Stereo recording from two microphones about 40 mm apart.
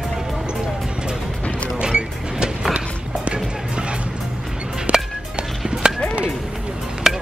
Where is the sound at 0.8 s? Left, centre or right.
Centre.